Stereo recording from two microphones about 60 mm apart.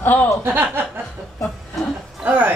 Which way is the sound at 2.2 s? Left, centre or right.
Right.